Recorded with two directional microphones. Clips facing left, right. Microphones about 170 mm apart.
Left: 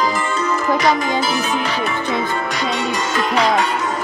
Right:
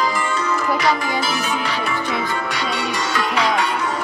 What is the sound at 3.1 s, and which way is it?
Music, 45° left (ahead or behind).